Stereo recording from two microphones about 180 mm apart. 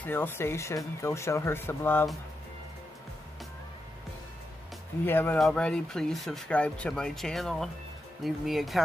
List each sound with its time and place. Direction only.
0.0 s speech: 10° left (ahead or behind)
5.0 s speech: 10° left (ahead or behind)